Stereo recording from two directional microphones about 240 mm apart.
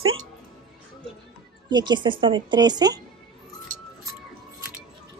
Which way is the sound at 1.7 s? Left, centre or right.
Centre.